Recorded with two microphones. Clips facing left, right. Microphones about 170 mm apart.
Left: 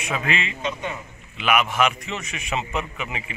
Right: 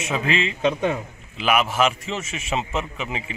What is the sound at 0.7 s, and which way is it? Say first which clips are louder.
Speech: right 9 dB; 60° right (ahead or behind).